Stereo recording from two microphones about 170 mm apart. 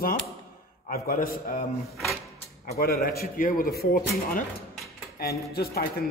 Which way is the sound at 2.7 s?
60° left (ahead or behind).